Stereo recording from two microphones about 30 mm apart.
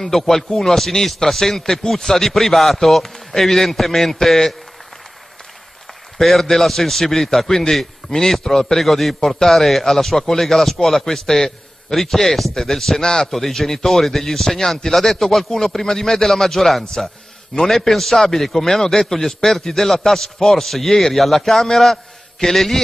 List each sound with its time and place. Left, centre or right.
0.1 s speech: centre
6.1 s a man's voice: centre
8.8 s a man's voice: centre
13.0 s a man's voice: left
13.3 s a man's voice: centre